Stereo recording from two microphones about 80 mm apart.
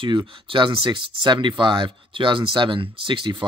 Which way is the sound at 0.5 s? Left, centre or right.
Right.